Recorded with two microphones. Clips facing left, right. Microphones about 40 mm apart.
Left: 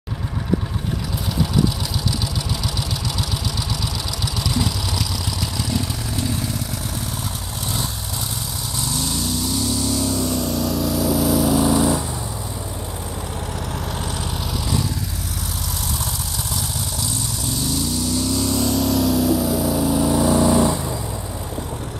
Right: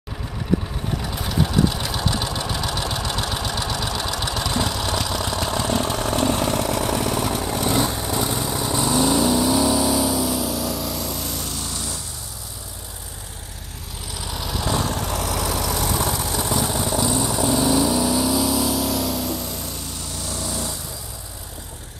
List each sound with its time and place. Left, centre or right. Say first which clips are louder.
1.4 s vehicle: even; right; by 12.0 s centre
14.7 s vehicle: right 4 dB; right
15.8 s vehicle: right 5 dB; right; by 20.7 s left